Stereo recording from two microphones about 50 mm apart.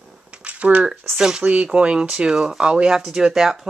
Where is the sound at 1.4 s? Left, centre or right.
Right.